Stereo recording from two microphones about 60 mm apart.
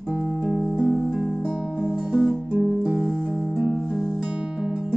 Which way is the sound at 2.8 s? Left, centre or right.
Right.